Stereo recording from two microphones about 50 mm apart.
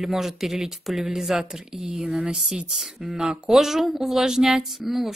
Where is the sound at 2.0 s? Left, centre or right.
Right.